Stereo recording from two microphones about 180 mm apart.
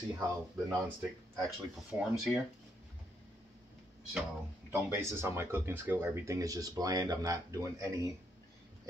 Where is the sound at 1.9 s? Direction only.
10° right (ahead or behind).